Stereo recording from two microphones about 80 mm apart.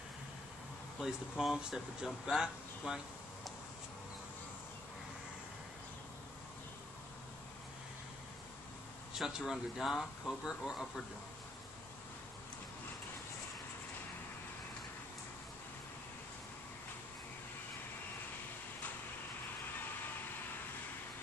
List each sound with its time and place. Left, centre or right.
1.0 s speech: centre
9.1 s speech: centre